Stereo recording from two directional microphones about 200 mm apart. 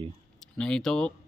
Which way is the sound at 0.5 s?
5° left (ahead or behind).